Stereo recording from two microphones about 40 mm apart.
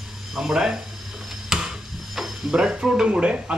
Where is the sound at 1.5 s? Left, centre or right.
Centre.